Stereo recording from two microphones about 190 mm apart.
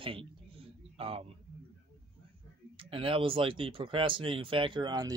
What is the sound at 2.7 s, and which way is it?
Speech, 30° right (ahead or behind).